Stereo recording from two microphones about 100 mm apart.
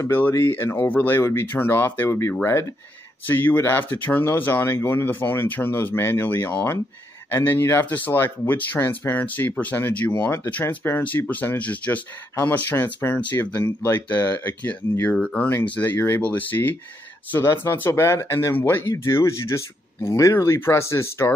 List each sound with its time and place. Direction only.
0.0 s speech: 25° left (ahead or behind)